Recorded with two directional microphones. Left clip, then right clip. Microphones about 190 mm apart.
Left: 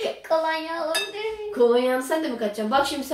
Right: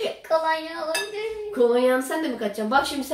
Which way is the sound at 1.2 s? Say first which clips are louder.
Even; centre (ahead or behind).